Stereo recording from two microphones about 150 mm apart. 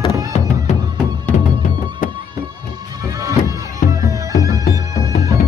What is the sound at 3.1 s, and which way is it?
Music, 20° right (ahead or behind).